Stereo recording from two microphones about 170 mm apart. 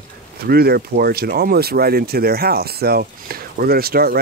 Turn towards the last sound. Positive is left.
turn(degrees=-65)  # may be behind; listen again after turning